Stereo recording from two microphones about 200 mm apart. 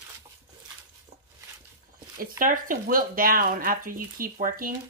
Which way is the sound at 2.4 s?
45° right (ahead or behind).